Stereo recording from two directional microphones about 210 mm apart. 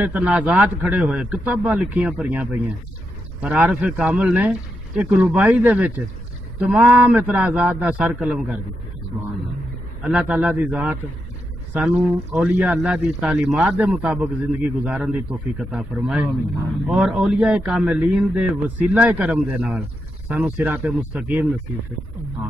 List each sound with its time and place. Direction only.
0.0 s speech: 5° right (ahead or behind)
10.0 s a man's voice: 5° right (ahead or behind)